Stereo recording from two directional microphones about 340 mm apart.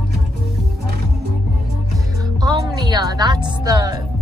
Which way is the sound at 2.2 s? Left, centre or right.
Centre.